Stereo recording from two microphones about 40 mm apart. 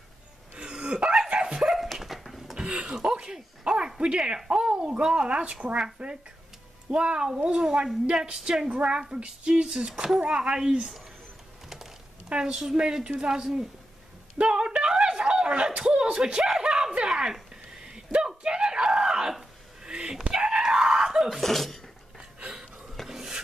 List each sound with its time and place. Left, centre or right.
0.6 s hiccup: right
1.3 s dog: right
1.6 s dog: centre
2.5 s a sound: right
4.5 s speech: right
6.9 s speech: right
12.3 s speech: right
14.4 s a sound: right
17.8 s screaming: right
19.8 s hiccup: centre
20.2 s screaming: right
21.3 s sneeze: centre
23.0 s a sound: centre